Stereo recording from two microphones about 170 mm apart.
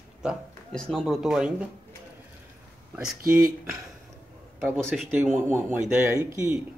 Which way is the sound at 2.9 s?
5° right (ahead or behind).